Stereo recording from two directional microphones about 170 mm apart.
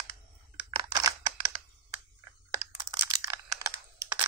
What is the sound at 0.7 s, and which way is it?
Camera, 20° right (ahead or behind).